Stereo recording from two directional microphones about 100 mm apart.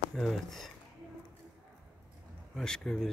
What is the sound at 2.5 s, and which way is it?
Speech, 5° left (ahead or behind).